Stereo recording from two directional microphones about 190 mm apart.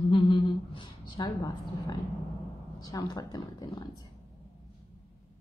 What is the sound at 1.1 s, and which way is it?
A woman's voice, 20° left (ahead or behind).